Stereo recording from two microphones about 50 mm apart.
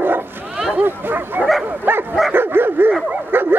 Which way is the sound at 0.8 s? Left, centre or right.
Right.